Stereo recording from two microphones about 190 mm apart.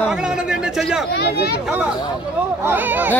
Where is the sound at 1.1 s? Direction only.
60° left (ahead or behind).